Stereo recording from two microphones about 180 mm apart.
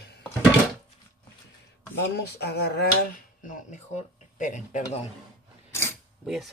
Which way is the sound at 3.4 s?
45° left (ahead or behind).